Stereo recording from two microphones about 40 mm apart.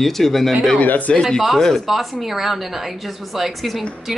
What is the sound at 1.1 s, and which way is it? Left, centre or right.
Speech, centre.